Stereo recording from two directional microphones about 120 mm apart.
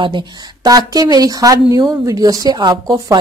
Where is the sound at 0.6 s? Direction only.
30° right (ahead or behind).